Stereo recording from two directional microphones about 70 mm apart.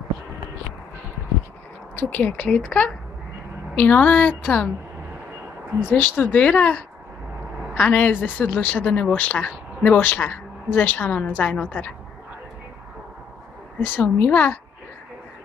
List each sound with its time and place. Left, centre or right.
2.0 s speech: left
5.9 s speech: left
13.9 s speech: left